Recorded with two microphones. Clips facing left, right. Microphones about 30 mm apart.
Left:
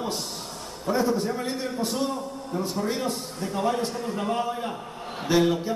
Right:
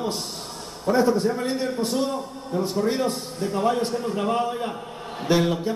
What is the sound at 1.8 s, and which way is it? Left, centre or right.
Speech, centre.